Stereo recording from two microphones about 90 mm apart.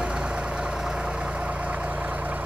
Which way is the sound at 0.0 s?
10° right (ahead or behind).